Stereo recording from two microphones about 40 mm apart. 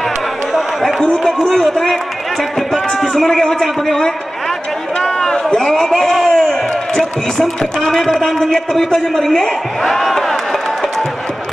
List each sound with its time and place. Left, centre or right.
1.2 s a man's voice: centre
2.7 s a man's voice: centre
5.2 s a sound: centre
7.0 s a man's voice: centre